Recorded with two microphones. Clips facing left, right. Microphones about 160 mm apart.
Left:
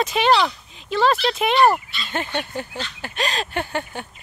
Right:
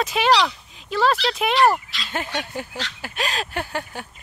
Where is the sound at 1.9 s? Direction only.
85° right.